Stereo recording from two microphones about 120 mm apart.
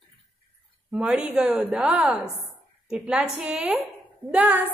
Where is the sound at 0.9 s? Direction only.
5° right (ahead or behind).